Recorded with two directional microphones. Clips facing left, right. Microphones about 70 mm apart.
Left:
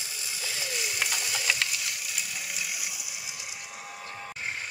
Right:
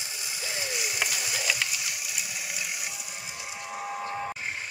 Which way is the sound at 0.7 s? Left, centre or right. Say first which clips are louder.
Even; centre.